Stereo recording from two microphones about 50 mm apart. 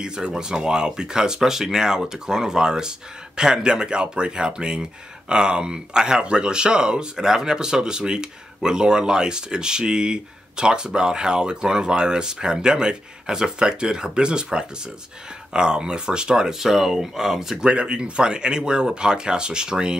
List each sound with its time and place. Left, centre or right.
0.0 s speech: centre
17.6 s speech: right